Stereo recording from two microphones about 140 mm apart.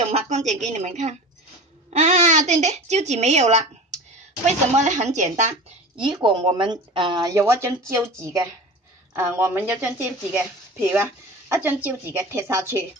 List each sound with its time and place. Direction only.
0.1 s a woman's voice: 55° right (ahead or behind)
5.9 s a woman's voice: 35° right (ahead or behind)